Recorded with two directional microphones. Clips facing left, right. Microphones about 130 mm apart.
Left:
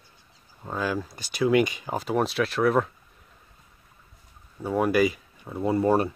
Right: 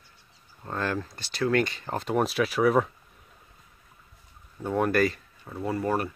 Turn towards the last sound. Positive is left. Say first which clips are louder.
# left 5 dB
turn(degrees=25)  # may be behind; listen again after turning